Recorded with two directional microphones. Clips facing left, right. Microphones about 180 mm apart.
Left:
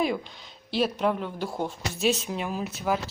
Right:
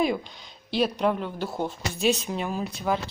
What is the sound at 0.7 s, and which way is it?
Speech, 5° left (ahead or behind).